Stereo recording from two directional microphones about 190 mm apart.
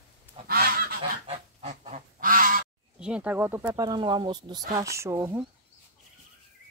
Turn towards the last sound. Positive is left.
turn(degrees=-15)  # may be behind; listen again after turning